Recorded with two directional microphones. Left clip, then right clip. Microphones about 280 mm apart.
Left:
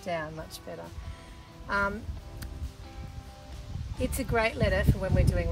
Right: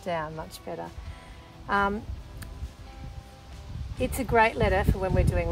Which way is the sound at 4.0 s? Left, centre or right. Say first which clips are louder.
Right 5 dB; right.